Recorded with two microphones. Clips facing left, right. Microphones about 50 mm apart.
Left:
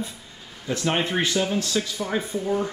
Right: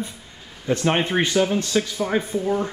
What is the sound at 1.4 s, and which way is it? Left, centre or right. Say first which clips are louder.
Speech: right 4 dB; centre.